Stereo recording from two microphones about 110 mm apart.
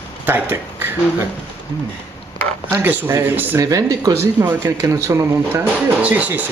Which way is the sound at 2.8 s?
20° right (ahead or behind).